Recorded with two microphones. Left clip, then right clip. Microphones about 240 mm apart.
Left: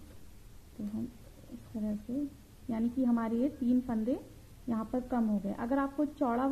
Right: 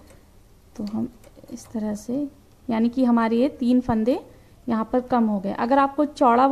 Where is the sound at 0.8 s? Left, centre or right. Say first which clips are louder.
Right 11 dB; right.